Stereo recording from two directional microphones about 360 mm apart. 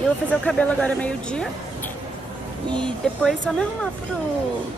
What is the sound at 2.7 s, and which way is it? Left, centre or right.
Speech, centre.